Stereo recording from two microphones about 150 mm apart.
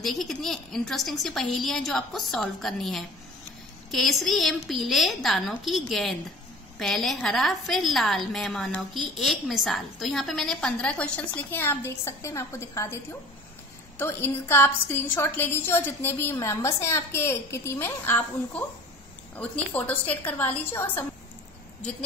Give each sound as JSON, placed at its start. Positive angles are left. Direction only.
{"t": 0.0, "sound": "a woman's voice", "side_deg": 0}